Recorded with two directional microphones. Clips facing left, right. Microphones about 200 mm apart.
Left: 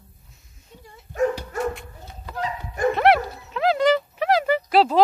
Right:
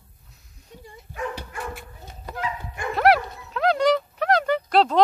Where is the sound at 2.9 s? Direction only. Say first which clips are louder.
Even; centre (ahead or behind).